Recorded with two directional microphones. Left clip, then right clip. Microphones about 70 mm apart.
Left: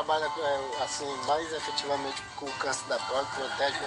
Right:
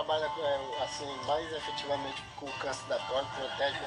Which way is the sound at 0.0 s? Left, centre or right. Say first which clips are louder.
Left 3 dB; left.